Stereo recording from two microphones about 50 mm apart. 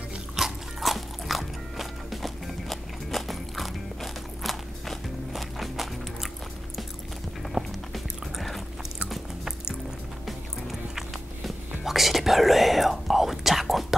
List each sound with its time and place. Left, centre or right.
0.4 s music: centre
7.6 s walk: centre
7.9 s music: centre